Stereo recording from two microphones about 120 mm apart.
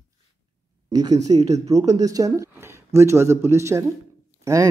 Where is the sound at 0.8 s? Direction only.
30° right (ahead or behind).